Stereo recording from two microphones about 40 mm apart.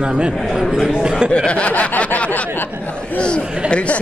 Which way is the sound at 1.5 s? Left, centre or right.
Left.